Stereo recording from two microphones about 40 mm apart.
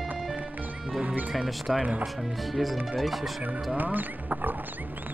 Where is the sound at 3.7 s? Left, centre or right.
Right.